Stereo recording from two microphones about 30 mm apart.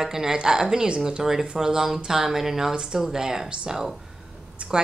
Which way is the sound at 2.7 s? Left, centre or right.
Right.